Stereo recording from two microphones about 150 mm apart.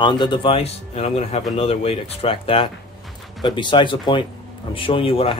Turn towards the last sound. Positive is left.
turn(degrees=35)  # may be behind; listen again after turning